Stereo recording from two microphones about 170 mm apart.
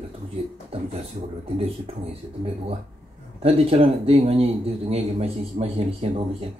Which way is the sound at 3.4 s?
35° right (ahead or behind).